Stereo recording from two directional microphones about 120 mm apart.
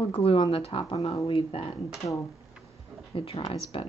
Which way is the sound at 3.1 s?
50° left (ahead or behind).